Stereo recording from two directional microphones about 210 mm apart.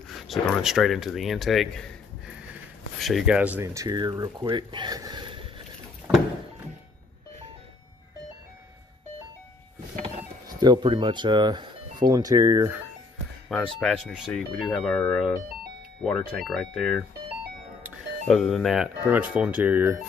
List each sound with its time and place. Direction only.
0.3 s speech: centre (ahead or behind); by 5.5 s 25° right (ahead or behind)
10.6 s speech: 20° right (ahead or behind)
13.5 s speech: centre (ahead or behind)
18.2 s speech: centre (ahead or behind)